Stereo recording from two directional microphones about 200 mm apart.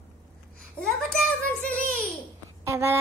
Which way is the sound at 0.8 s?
5° left (ahead or behind).